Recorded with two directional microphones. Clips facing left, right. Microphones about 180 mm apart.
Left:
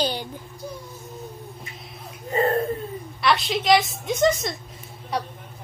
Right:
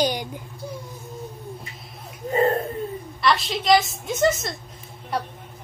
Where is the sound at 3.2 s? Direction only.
Centre (ahead or behind).